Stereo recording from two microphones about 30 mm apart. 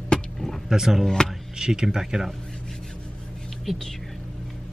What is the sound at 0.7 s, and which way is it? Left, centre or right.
Speech, centre.